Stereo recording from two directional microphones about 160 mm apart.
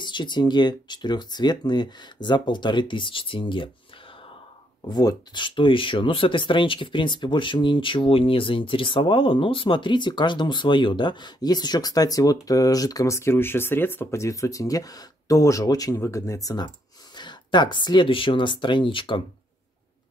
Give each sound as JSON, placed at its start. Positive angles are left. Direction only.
{"t": 0.0, "sound": "speech", "side_deg": 30}
{"t": 4.8, "sound": "speech", "side_deg": 25}